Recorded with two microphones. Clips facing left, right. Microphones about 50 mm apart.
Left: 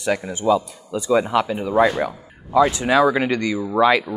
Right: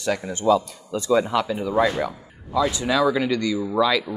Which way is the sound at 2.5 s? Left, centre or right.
Left.